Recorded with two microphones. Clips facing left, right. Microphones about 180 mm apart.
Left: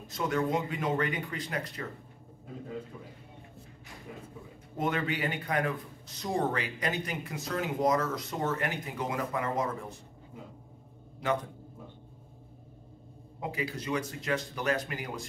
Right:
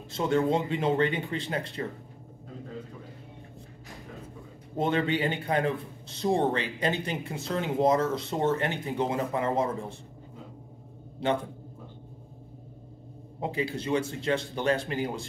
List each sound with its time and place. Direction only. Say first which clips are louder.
0.1 s a man's voice: right 4 dB; 25° right (ahead or behind)
4.7 s a man's voice: right 5 dB; 30° right (ahead or behind)
11.2 s a man's voice: right 3 dB; 30° right (ahead or behind)
13.4 s a man's voice: right 5 dB; 30° right (ahead or behind)